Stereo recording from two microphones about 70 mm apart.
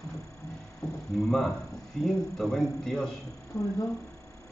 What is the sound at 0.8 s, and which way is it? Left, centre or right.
A man's voice, centre.